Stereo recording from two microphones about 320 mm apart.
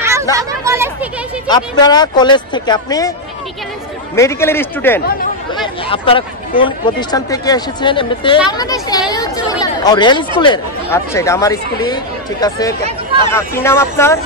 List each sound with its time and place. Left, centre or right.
0.0 s a sound: centre
1.5 s speech: centre
4.1 s speech: centre
5.9 s speech: centre